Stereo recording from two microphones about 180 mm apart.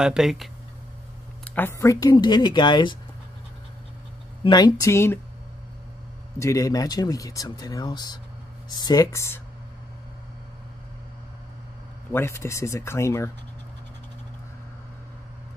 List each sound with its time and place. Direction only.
0.0 s speech: 5° right (ahead or behind)
1.4 s speech: 10° left (ahead or behind); by 3.0 s 25° left (ahead or behind)
4.5 s speech: 20° left (ahead or behind)
6.4 s speech: 15° left (ahead or behind)
12.1 s speech: 15° left (ahead or behind)